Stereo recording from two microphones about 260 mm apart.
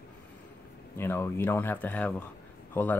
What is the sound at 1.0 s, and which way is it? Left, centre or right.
Speech, centre.